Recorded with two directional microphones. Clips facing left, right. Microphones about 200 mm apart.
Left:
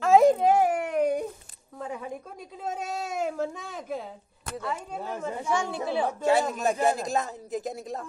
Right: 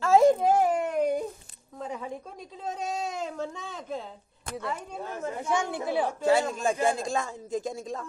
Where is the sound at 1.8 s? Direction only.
5° left (ahead or behind).